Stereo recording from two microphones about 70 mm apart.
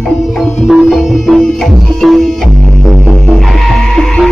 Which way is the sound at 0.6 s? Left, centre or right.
Centre.